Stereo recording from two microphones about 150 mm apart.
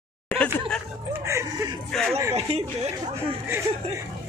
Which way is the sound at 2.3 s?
45° right (ahead or behind).